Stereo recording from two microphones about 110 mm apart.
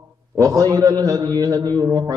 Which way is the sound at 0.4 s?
35° right (ahead or behind).